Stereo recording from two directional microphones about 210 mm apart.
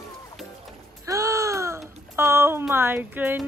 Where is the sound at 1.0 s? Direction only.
15° right (ahead or behind).